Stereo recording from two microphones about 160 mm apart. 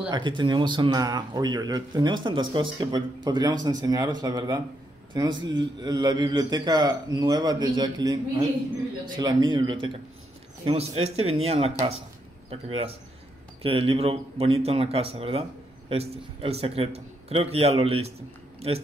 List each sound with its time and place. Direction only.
0.1 s a man's voice: 30° right (ahead or behind)